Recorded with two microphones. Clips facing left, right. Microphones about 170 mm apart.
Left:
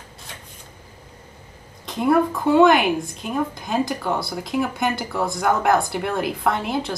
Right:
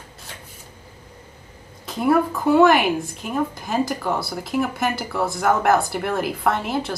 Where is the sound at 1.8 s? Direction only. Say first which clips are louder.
Even; 5° right (ahead or behind).